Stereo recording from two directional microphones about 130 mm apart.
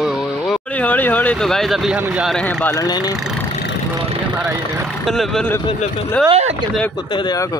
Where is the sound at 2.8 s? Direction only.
30° left (ahead or behind).